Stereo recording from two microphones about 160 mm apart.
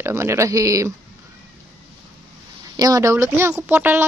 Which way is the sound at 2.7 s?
20° right (ahead or behind).